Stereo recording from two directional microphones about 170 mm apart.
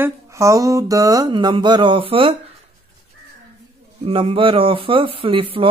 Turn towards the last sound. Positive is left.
turn(degrees=-30)  # may be behind; listen again after turning